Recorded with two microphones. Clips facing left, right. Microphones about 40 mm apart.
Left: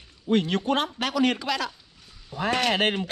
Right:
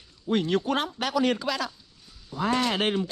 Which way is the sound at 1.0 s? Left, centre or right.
Left.